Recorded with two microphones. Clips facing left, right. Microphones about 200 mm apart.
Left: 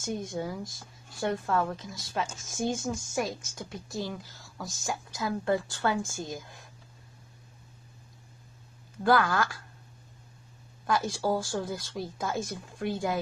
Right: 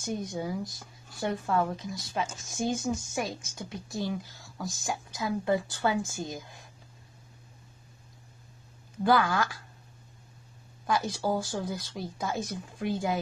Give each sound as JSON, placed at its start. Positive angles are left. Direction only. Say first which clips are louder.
{"t": 0.0, "sound": "speech", "louder": "even", "side_deg": 0}
{"t": 9.0, "sound": "speech", "louder": "even", "side_deg": 0}
{"t": 10.9, "sound": "speech", "louder": "left 1 dB", "side_deg": 0}